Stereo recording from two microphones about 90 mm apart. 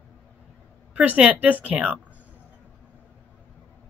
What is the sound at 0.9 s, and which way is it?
Speech, 15° right (ahead or behind).